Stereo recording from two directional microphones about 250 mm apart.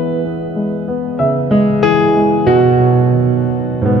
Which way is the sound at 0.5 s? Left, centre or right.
Left.